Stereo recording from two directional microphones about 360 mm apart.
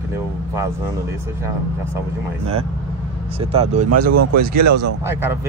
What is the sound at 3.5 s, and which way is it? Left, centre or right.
Speech, centre.